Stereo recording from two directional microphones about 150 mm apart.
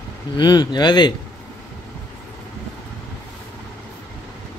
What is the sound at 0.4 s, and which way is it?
Speech, 30° left (ahead or behind).